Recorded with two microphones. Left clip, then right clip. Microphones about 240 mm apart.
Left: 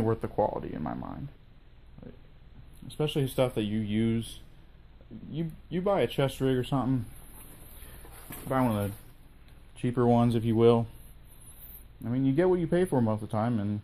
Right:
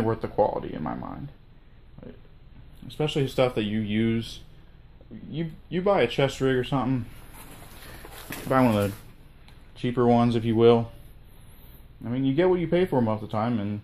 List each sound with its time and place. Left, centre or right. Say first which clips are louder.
0.0 s speech: right 4 dB; left
2.9 s speech: right 4 dB; left
8.5 s speech: right 7 dB; centre
9.8 s speech: right 4 dB; left
12.0 s speech: right 3 dB; left